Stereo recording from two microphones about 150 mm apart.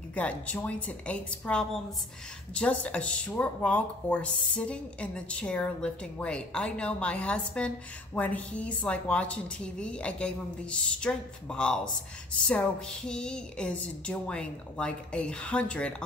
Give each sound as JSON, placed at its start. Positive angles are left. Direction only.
{"t": 0.1, "sound": "speech", "side_deg": 10}